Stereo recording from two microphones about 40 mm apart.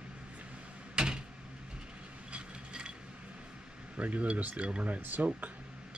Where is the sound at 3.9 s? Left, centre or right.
Right.